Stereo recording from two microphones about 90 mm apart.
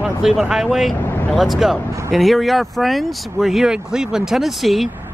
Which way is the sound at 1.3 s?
Centre (ahead or behind).